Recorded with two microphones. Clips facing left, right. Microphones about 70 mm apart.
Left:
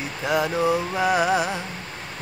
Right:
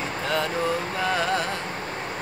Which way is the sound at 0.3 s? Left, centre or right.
Centre.